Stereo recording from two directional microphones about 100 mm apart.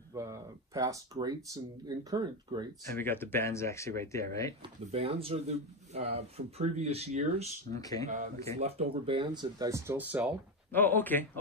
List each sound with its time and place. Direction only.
0.1 s speech: 30° right (ahead or behind)
3.0 s speech: 20° left (ahead or behind)
4.9 s speech: 75° right (ahead or behind); by 7.4 s 90° right
7.7 s speech: 35° left (ahead or behind)
8.5 s speech: 90° right; by 9.7 s 45° right (ahead or behind)
9.7 s speech: 25° right (ahead or behind)
9.9 s speech: 15° right (ahead or behind)
10.7 s speech: 20° left (ahead or behind)